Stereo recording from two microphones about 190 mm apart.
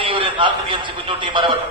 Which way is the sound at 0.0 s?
25° right (ahead or behind).